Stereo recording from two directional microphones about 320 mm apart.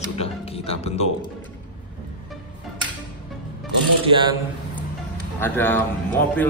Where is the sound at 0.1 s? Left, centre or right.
Centre.